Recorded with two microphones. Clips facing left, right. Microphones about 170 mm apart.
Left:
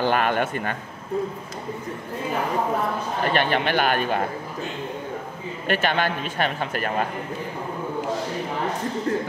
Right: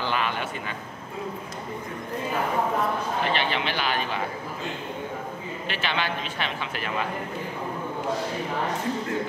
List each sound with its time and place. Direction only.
0.0 s a man's voice: 50° left (ahead or behind)
3.3 s a man's voice: 50° left (ahead or behind)
5.7 s a man's voice: 50° left (ahead or behind)